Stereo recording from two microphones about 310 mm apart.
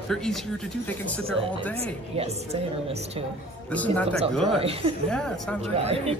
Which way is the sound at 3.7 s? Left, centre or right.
Centre.